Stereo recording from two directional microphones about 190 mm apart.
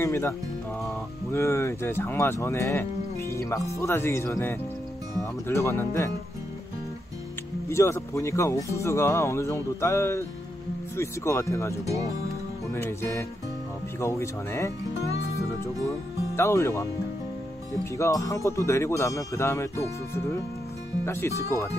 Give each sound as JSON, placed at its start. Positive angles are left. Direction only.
{"t": 0.0, "sound": "speech", "side_deg": 15}
{"t": 1.3, "sound": "speech", "side_deg": 15}
{"t": 7.6, "sound": "speech", "side_deg": 15}
{"t": 16.3, "sound": "speech", "side_deg": 15}
{"t": 17.9, "sound": "speech", "side_deg": 15}
{"t": 21.0, "sound": "speech", "side_deg": 15}